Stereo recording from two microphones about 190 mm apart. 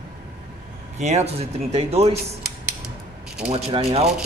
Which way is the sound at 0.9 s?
35° right (ahead or behind).